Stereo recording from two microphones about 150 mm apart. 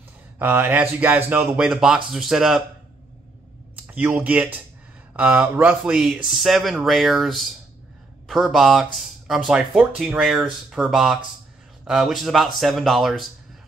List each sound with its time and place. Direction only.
0.4 s speech: 15° right (ahead or behind)
3.8 s speech: 10° right (ahead or behind)